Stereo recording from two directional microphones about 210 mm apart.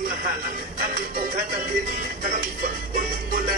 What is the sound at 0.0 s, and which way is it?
Music, 40° right (ahead or behind).